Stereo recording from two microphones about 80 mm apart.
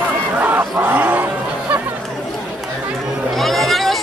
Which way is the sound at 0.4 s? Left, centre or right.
Right.